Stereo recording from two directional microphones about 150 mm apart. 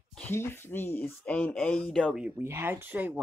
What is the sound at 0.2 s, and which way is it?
Speech, 15° left (ahead or behind).